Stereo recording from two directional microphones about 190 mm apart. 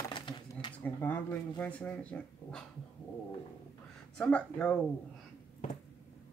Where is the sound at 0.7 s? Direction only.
10° left (ahead or behind).